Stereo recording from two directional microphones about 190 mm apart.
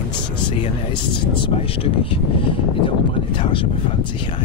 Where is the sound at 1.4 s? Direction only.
30° left (ahead or behind).